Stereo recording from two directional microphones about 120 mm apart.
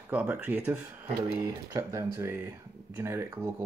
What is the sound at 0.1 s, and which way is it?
Speech, 10° right (ahead or behind).